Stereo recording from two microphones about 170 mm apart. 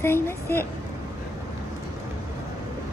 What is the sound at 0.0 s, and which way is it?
Speech, 15° left (ahead or behind).